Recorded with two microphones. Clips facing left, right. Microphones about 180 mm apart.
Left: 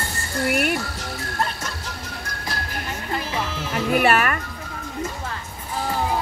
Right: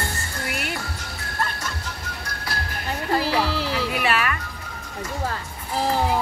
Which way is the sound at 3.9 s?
50° left (ahead or behind).